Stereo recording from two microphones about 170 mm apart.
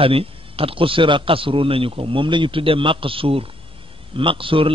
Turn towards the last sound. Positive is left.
turn(degrees=-30)  # may be behind; listen again after turning